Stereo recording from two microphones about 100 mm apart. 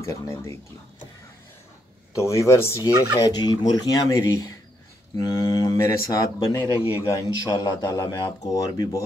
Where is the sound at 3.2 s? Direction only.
40° left (ahead or behind).